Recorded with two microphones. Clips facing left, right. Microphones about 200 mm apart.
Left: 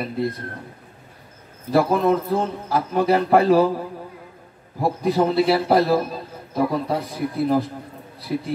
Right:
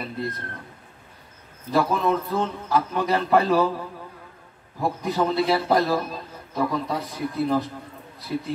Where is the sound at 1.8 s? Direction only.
35° left (ahead or behind).